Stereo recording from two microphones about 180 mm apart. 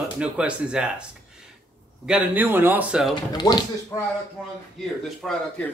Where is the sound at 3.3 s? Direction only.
25° left (ahead or behind).